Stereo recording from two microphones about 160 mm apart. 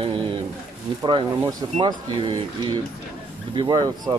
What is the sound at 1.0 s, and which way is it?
Speech, 25° right (ahead or behind).